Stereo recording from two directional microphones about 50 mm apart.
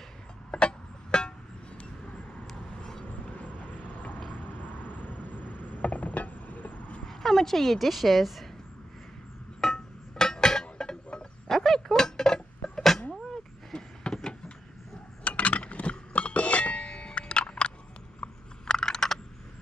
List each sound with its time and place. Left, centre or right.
0.5 s music: centre
2.8 s vehicle: centre
3.3 s vehicle: left
7.1 s speech: centre
9.6 s chink: centre
11.5 s a sound: centre
14.0 s vehicle: centre
15.2 s a sound: left; by 19.1 s centre